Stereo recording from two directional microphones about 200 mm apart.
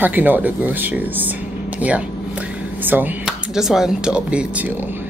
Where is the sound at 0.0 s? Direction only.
10° right (ahead or behind).